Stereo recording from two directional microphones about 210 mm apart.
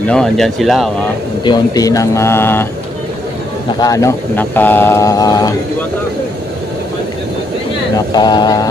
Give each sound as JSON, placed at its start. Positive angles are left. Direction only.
{"t": 0.0, "sound": "speech", "side_deg": 5}
{"t": 1.4, "sound": "speech", "side_deg": 20}
{"t": 3.8, "sound": "speech", "side_deg": 15}
{"t": 8.1, "sound": "speech", "side_deg": 20}